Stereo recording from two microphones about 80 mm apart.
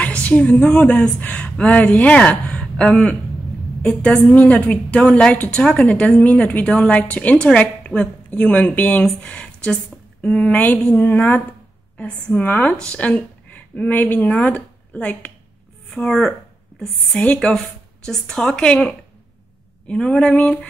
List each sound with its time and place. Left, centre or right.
0.0 s a woman's voice: centre